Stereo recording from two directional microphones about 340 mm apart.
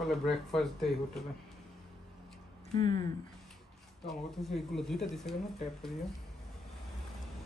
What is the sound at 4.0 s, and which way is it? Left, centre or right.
Speech, centre.